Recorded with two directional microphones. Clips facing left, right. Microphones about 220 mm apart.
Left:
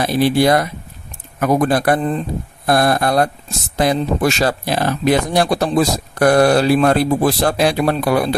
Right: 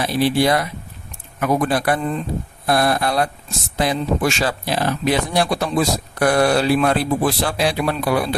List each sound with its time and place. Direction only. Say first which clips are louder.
0.0 s speech: left 3 dB; 45° left (ahead or behind)